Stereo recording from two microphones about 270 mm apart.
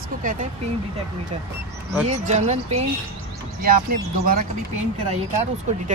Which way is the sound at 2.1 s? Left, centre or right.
Right.